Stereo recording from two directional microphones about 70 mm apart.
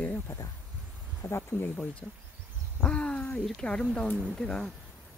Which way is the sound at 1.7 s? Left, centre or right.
Centre.